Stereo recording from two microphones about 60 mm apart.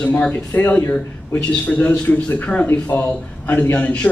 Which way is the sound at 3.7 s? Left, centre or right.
Left.